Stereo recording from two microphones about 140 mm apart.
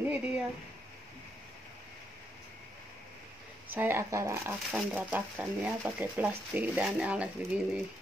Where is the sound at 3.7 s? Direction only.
15° right (ahead or behind).